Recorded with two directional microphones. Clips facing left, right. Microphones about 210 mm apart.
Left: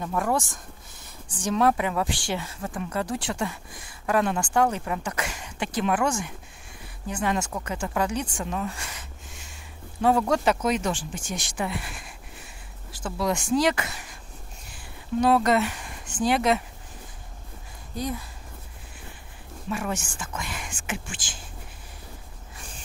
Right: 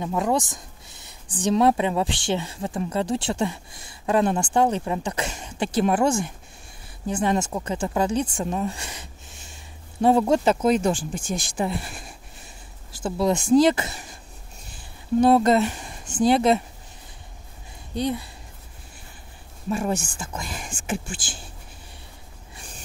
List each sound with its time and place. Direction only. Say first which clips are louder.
0.0 s speech: right 3 dB; 20° right (ahead or behind)
10.0 s speech: right 3 dB; 25° right (ahead or behind)
15.1 s speech: right 4 dB; 30° right (ahead or behind)
19.7 s speech: right 5 dB; 30° right (ahead or behind)